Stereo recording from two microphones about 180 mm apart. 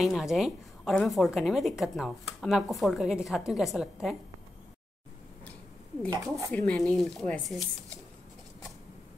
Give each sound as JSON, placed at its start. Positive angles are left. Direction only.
{"t": 0.0, "sound": "a woman's voice", "side_deg": 0}
{"t": 6.2, "sound": "speech", "side_deg": -20}
{"t": 6.5, "sound": "a woman's voice", "side_deg": 5}